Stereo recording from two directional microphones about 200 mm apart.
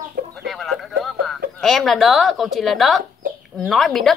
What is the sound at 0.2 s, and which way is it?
Chicken, 45° right (ahead or behind).